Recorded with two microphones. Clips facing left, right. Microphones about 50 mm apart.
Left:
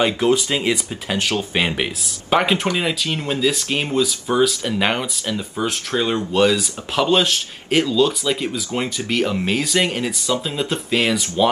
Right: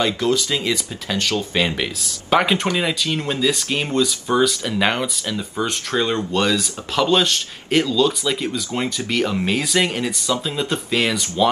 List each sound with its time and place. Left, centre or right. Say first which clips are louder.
0.0 s speech: left 2 dB; left
2.3 s speech: even; centre